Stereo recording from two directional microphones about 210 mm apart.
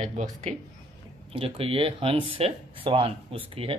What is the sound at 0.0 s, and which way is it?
Speech, 35° right (ahead or behind).